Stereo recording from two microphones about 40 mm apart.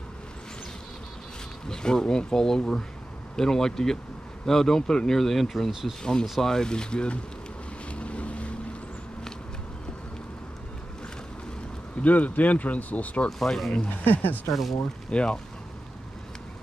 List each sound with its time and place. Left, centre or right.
1.7 s speech: centre
5.7 s speech: centre
6.5 s speech: centre
7.9 s boat: left
12.0 s speech: left
13.4 s speech: centre
14.0 s speech: left
14.5 s speech: centre
15.0 s speech: left